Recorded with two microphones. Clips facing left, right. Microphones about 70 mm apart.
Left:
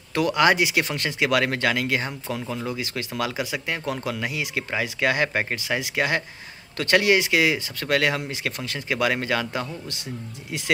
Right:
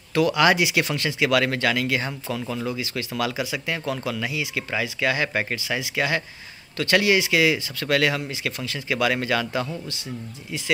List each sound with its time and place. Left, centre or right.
0.1 s speech: left
2.2 s speech: left
2.8 s speech: left
3.1 s speech: left
3.3 s speech: left
4.3 s speech: left
5.3 s speech: left
5.8 s speech: left
8.3 s speech: left